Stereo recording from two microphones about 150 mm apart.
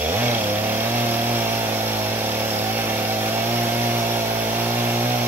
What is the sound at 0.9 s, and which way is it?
Chainsaw, 15° right (ahead or behind).